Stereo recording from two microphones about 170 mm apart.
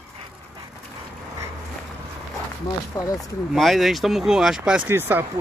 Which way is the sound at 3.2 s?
Centre (ahead or behind).